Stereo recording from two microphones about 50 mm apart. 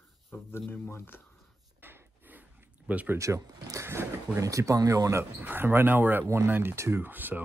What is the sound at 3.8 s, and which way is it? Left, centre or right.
Speech, right.